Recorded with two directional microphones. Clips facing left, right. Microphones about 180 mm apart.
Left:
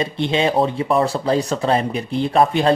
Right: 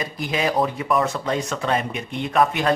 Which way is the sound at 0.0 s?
25° left (ahead or behind).